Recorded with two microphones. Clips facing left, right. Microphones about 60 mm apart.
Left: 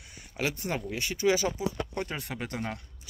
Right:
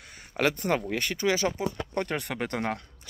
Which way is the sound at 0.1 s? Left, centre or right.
Right.